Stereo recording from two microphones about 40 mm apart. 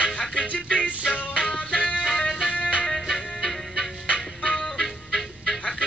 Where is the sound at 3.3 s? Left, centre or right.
Centre.